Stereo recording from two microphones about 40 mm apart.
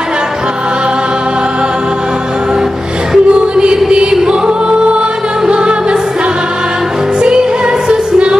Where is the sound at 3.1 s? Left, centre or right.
Right.